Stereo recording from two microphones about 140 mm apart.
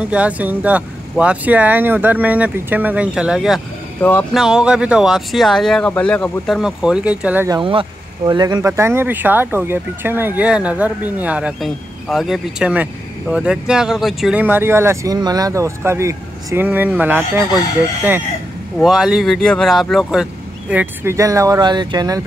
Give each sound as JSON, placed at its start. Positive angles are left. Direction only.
{"t": 0.0, "sound": "speech", "side_deg": -10}
{"t": 4.0, "sound": "a sound", "side_deg": 15}
{"t": 4.3, "sound": "speech", "side_deg": -5}
{"t": 7.4, "sound": "speech", "side_deg": -35}
{"t": 8.7, "sound": "speech", "side_deg": -20}
{"t": 14.4, "sound": "speech", "side_deg": -15}
{"t": 15.1, "sound": "speech", "side_deg": -30}
{"t": 18.8, "sound": "speech", "side_deg": -5}
{"t": 20.7, "sound": "speech", "side_deg": -15}